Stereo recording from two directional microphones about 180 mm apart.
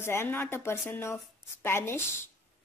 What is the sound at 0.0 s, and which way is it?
Speech, 15° left (ahead or behind).